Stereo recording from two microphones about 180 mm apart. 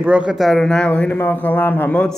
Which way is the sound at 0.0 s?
5° right (ahead or behind).